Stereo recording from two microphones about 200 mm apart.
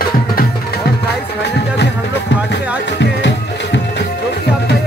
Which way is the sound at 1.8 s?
60° left (ahead or behind).